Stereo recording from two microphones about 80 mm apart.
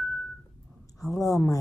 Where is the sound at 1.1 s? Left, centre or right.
Left.